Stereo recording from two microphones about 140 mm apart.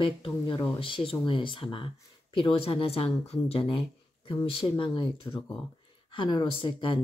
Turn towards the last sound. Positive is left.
turn(degrees=35)  # may be behind; listen again after turning